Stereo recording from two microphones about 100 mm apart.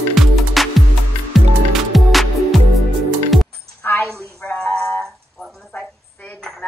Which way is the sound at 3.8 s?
20° left (ahead or behind).